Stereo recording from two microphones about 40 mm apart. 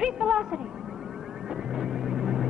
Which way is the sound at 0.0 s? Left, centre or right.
Centre.